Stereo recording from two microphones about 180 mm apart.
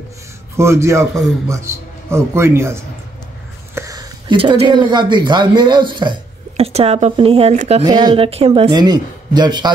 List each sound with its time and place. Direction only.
0.6 s a man's voice: 15° right (ahead or behind); by 7.8 s 35° right (ahead or behind)
7.8 s speech: 25° right (ahead or behind)